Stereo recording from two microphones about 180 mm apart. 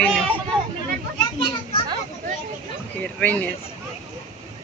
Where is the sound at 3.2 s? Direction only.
10° left (ahead or behind).